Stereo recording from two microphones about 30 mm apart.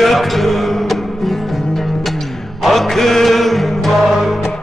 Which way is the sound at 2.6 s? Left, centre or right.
Centre.